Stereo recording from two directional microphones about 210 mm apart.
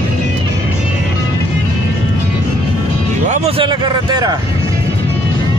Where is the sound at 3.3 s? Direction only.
25° right (ahead or behind).